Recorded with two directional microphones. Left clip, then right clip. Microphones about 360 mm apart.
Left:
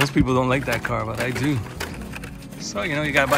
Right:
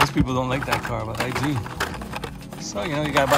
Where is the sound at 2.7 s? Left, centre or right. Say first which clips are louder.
Left 2 dB; centre.